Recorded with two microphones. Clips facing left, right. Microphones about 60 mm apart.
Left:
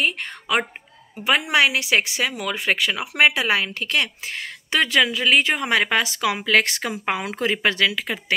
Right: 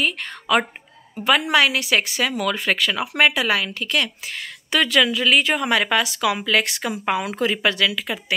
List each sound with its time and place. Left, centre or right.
0.0 s a woman's voice: left